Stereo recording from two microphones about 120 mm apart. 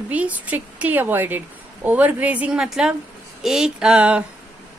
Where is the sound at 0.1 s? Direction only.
10° right (ahead or behind).